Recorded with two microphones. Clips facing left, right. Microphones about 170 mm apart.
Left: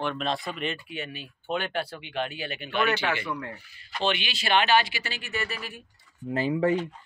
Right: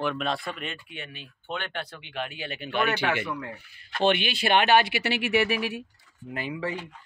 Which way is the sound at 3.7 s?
55° right (ahead or behind).